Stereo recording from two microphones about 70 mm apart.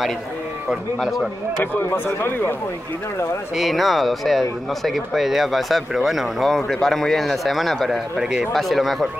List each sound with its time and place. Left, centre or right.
0.7 s speech: centre
1.9 s speech: left
3.5 s speech: centre
8.2 s speech: centre
8.5 s speech: centre